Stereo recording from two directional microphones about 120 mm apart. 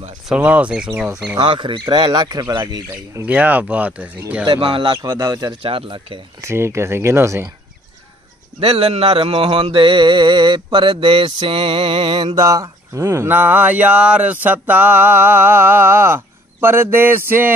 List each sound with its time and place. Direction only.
0.3 s speech: 10° right (ahead or behind)
1.3 s speech: 40° right (ahead or behind)
2.9 s speech: 15° right (ahead or behind)
4.5 s music: 45° right (ahead or behind)
5.0 s speech: 30° right (ahead or behind); by 6.2 s 45° right (ahead or behind)
6.4 s speech: 20° right (ahead or behind)
8.5 s music: 55° right (ahead or behind)
12.4 s speech: 30° right (ahead or behind)